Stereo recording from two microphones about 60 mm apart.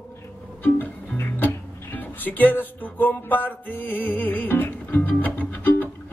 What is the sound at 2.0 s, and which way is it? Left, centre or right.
Music, left.